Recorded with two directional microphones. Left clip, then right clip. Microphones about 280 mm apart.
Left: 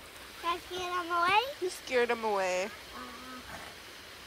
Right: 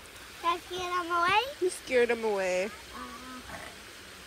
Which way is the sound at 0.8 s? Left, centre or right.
Centre.